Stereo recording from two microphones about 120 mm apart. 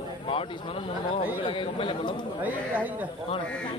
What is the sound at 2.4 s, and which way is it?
Speech, 15° right (ahead or behind).